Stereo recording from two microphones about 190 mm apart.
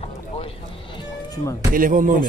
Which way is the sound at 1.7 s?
45° right (ahead or behind).